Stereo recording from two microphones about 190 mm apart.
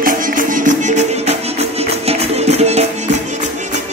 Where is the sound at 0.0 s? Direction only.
45° right (ahead or behind).